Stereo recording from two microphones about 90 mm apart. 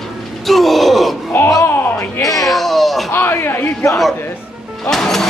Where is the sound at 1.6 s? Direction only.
25° left (ahead or behind).